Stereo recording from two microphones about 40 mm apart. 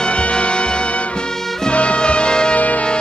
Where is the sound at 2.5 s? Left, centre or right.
Left.